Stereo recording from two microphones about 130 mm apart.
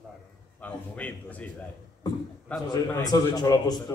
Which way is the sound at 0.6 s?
10° left (ahead or behind).